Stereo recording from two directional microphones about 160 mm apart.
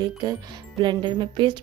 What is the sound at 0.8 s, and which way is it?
Music, 30° right (ahead or behind).